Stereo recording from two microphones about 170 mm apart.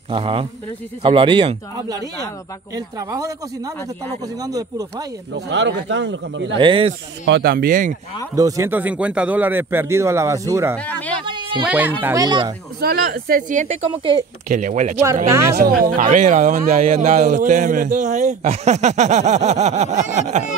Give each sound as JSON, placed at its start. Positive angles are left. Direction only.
{"t": 0.1, "sound": "speech", "side_deg": -30}
{"t": 5.3, "sound": "a man's voice", "side_deg": -90}
{"t": 6.6, "sound": "speech", "side_deg": -30}
{"t": 7.2, "sound": "speech", "side_deg": -80}
{"t": 8.4, "sound": "a man's voice", "side_deg": -20}
{"t": 10.8, "sound": "speech", "side_deg": 10}
{"t": 11.2, "sound": "a sound", "side_deg": -25}
{"t": 11.6, "sound": "a man's voice", "side_deg": -10}
{"t": 12.8, "sound": "speech", "side_deg": -60}
{"t": 15.2, "sound": "a man's voice", "side_deg": -15}
{"t": 15.5, "sound": "speech", "side_deg": -55}